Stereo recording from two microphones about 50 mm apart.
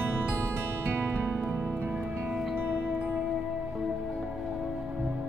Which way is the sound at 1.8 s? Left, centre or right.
Right.